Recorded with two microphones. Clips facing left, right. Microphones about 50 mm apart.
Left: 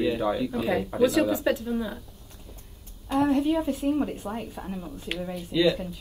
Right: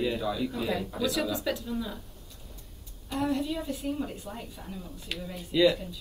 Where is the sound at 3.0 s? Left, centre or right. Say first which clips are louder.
Left 7 dB; left.